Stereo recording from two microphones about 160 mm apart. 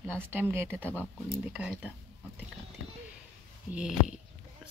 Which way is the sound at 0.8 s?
10° left (ahead or behind).